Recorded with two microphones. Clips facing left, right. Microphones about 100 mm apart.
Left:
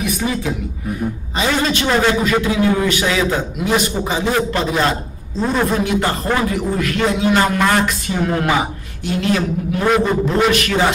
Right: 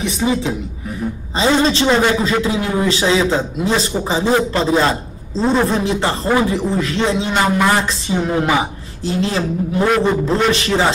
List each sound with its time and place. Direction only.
0.0 s a man's voice: 25° right (ahead or behind)
7.4 s speech: 5° right (ahead or behind)
7.7 s a man's voice: 20° right (ahead or behind)
9.0 s a man's voice: 30° right (ahead or behind)